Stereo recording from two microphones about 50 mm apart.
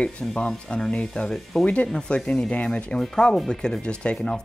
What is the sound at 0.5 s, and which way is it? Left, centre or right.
Speech, centre.